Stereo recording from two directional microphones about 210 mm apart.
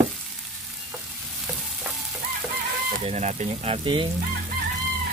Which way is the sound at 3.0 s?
30° right (ahead or behind).